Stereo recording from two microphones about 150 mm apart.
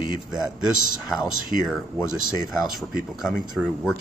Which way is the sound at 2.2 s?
Centre (ahead or behind).